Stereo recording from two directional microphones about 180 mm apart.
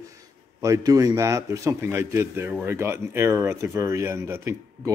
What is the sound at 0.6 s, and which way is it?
Speech, 20° right (ahead or behind).